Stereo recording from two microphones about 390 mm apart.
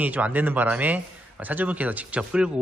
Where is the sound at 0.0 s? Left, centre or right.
Centre.